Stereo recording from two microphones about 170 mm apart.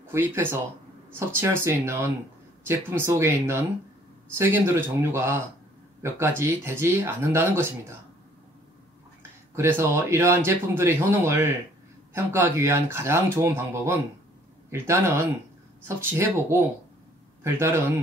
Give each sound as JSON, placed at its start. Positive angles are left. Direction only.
{"t": 0.0, "sound": "speech", "side_deg": -15}
{"t": 9.6, "sound": "speech", "side_deg": -15}